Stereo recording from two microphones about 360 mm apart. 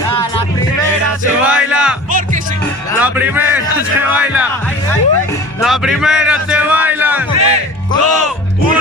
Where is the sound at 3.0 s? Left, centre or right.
Centre.